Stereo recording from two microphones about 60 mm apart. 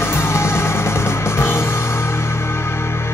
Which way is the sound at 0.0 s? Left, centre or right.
Left.